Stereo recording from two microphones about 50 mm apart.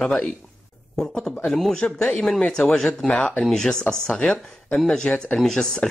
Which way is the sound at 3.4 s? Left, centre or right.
Centre.